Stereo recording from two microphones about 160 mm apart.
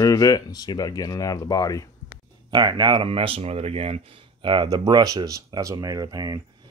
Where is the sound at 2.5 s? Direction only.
30° right (ahead or behind).